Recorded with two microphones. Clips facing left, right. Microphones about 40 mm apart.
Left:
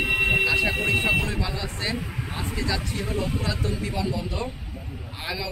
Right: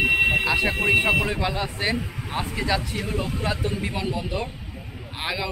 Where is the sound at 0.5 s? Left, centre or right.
Right.